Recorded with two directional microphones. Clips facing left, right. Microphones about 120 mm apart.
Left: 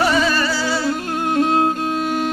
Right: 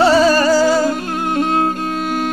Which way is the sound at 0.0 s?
35° right (ahead or behind).